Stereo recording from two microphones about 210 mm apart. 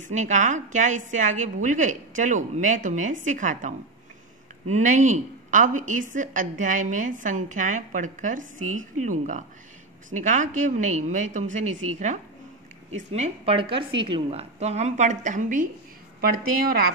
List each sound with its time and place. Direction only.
0.0 s a woman's voice: 35° right (ahead or behind)